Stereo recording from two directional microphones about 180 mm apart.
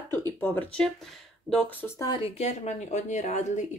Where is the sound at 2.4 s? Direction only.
40° left (ahead or behind).